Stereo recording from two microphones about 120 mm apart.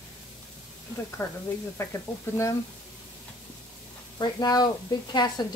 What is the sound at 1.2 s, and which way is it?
Speech, 25° left (ahead or behind).